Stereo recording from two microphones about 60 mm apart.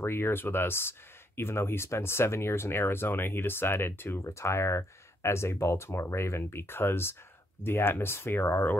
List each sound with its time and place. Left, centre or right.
0.0 s speech: left
4.2 s speech: left